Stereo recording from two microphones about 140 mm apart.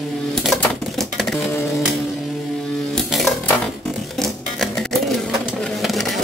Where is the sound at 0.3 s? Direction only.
Centre (ahead or behind).